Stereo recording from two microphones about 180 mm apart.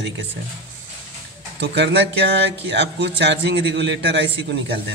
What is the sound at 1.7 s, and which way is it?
Speech, 75° right (ahead or behind).